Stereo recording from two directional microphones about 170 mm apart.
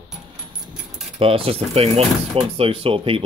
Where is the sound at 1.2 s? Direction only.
30° right (ahead or behind).